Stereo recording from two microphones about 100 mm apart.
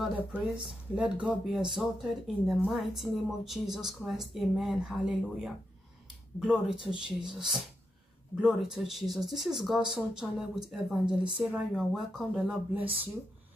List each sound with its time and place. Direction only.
0.3 s speech: 10° right (ahead or behind)